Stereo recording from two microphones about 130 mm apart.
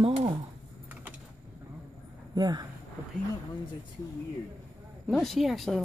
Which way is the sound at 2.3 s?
30° right (ahead or behind).